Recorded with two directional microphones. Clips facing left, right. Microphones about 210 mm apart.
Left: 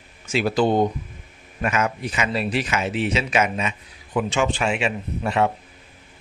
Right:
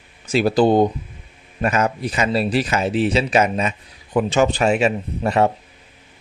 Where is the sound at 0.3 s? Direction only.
35° right (ahead or behind).